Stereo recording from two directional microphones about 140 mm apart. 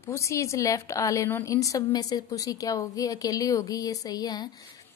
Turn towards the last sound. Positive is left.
turn(degrees=30)  # may be behind; listen again after turning